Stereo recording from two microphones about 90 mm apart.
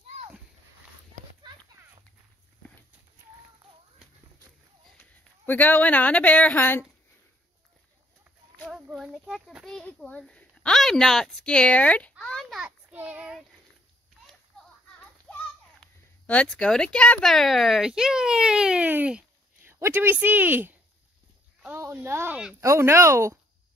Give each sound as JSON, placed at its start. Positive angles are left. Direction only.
{"t": 5.4, "sound": "speech", "side_deg": 20}
{"t": 8.9, "sound": "a sound", "side_deg": -5}
{"t": 9.7, "sound": "a woman's voice", "side_deg": 5}
{"t": 12.9, "sound": "child singing", "side_deg": -20}
{"t": 16.5, "sound": "speech", "side_deg": 10}
{"t": 19.6, "sound": "speech", "side_deg": -25}
{"t": 21.7, "sound": "speech", "side_deg": -30}
{"t": 22.3, "sound": "speech", "side_deg": -10}
{"t": 22.6, "sound": "speech", "side_deg": -30}